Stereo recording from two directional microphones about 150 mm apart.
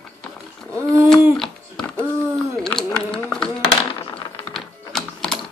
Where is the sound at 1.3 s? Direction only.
Centre (ahead or behind).